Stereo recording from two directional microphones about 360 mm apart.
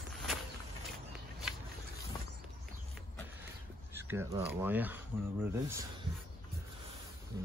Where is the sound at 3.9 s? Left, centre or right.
Centre.